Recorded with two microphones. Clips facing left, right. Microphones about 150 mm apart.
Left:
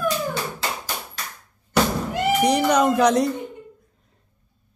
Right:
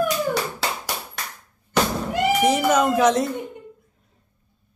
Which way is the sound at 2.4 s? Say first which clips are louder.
Left 2 dB; centre (ahead or behind).